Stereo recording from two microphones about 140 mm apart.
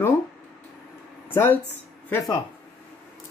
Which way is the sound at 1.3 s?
15° left (ahead or behind).